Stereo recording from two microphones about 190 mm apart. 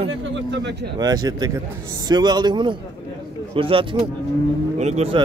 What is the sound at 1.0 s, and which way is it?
A man's voice, 20° right (ahead or behind).